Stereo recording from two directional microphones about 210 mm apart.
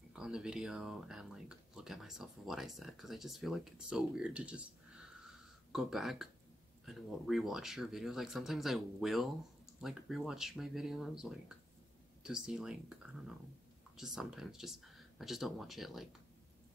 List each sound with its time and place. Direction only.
0.1 s speech: 5° right (ahead or behind)
5.7 s speech: centre (ahead or behind)